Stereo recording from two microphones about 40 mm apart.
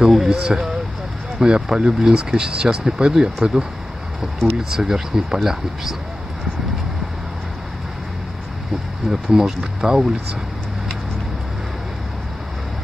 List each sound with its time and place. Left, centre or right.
0.1 s speech: centre
4.7 s speech: centre
9.1 s speech: centre